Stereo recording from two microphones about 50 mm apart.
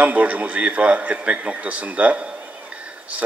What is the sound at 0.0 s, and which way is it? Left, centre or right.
A man's voice, right.